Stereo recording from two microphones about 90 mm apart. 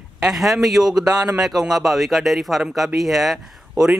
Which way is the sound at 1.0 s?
45° right (ahead or behind).